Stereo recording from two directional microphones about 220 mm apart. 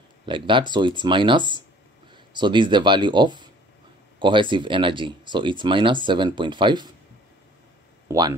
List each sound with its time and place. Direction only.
0.3 s speech: 20° right (ahead or behind)
8.1 s speech: 15° right (ahead or behind)